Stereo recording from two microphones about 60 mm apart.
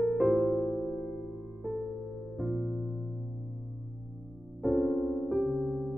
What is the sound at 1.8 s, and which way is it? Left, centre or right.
Music, left.